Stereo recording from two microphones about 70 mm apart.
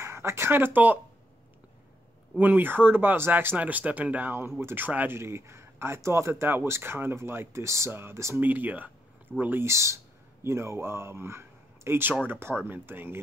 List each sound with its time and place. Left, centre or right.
0.0 s speech: right
2.3 s speech: right
5.1 s speech: right
8.4 s speech: right
9.7 s speech: right